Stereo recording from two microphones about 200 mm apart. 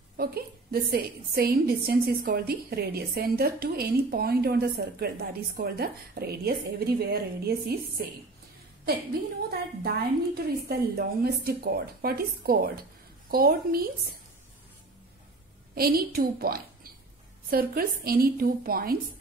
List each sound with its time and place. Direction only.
0.2 s a woman's voice: 50° right (ahead or behind)
9.5 s a woman's voice: 50° right (ahead or behind)
15.7 s a woman's voice: 50° right (ahead or behind)